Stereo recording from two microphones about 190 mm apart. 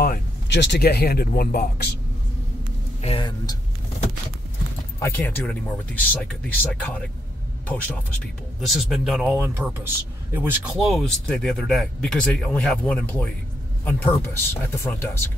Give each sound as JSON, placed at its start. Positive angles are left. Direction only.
{"t": 0.0, "sound": "speech", "side_deg": 60}
{"t": 3.0, "sound": "speech", "side_deg": 30}
{"t": 5.0, "sound": "speech", "side_deg": 10}
{"t": 11.0, "sound": "speech", "side_deg": 0}